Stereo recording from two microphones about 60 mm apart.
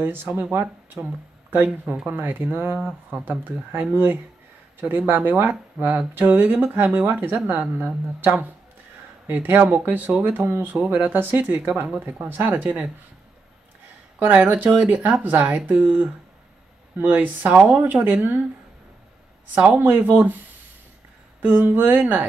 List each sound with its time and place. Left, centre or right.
0.0 s speech: right
14.2 s speech: right
17.0 s speech: right
19.5 s speech: centre
19.8 s speech: right
21.4 s speech: right